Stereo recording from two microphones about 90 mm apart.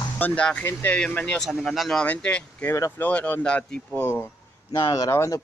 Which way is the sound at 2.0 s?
15° left (ahead or behind).